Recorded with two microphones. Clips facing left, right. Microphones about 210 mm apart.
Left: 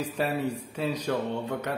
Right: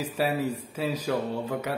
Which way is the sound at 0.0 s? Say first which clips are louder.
Right 1 dB; 5° right (ahead or behind).